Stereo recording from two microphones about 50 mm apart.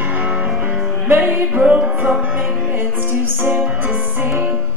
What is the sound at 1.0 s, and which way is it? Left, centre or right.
Music, right.